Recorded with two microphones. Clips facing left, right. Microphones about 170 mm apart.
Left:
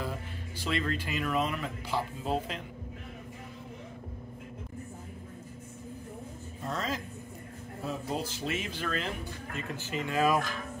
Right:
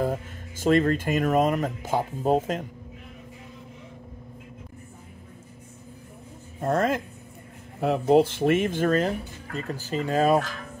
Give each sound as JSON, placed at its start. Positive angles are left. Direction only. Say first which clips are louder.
{"t": 0.0, "sound": "speech", "louder": "right 10 dB", "side_deg": -45}
{"t": 6.6, "sound": "speech", "louder": "right 11 dB", "side_deg": -55}
{"t": 8.1, "sound": "speech", "louder": "right 17 dB", "side_deg": -60}